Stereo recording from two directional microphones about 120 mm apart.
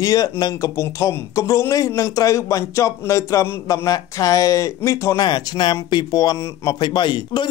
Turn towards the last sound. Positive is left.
turn(degrees=40)  # may be behind; listen again after turning